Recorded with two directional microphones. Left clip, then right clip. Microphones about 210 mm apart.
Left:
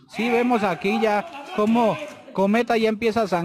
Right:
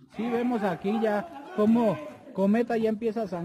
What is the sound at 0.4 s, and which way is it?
A man's voice, 30° left (ahead or behind).